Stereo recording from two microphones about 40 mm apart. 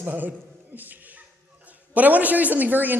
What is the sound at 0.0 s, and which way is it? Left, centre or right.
Speech, right.